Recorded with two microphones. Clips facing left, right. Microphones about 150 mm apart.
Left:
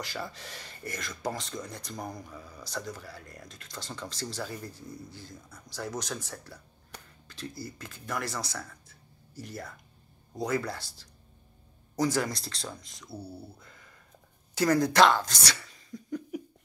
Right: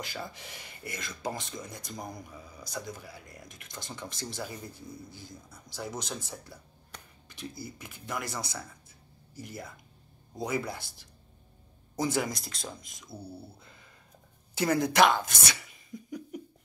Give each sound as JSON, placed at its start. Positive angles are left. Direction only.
{"t": 0.1, "sound": "speech", "side_deg": -15}
{"t": 13.1, "sound": "speech", "side_deg": 10}
{"t": 14.6, "sound": "speech", "side_deg": -15}